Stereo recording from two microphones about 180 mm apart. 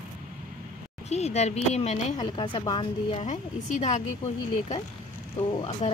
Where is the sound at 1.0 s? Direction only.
35° left (ahead or behind).